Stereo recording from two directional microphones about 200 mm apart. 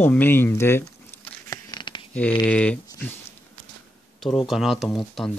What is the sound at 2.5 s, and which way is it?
Speech, 5° left (ahead or behind).